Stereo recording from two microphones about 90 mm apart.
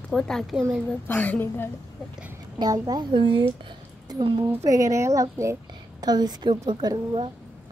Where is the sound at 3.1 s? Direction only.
75° right (ahead or behind).